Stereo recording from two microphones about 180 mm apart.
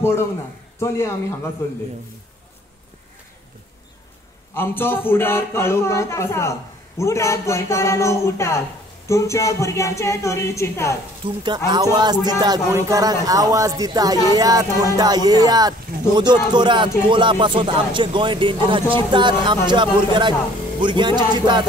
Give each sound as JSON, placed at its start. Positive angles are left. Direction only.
{"t": 0.7, "sound": "speech", "side_deg": 15}
{"t": 4.6, "sound": "speech", "side_deg": 10}
{"t": 11.2, "sound": "speech", "side_deg": -25}